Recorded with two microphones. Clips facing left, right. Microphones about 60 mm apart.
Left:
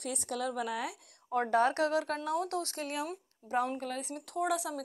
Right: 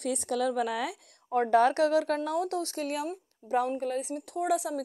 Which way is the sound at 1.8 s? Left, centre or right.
Left.